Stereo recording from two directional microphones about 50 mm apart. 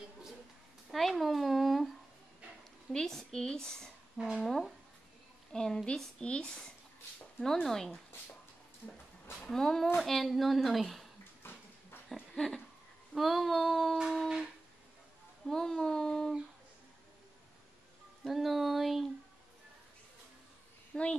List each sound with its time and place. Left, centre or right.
0.9 s a sound: centre
2.9 s a woman's voice: centre
5.5 s a woman's voice: centre
6.2 s speech: left
7.6 s a woman's voice: centre
9.4 s a woman's voice: centre
11.4 s a sound: left
12.1 s a sound: centre
13.1 s a woman's voice: centre
15.4 s a woman's voice: centre
18.2 s a woman's voice: centre
20.9 s a child's voice: left